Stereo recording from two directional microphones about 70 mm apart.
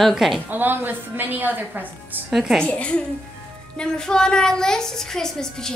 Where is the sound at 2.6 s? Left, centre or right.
Centre.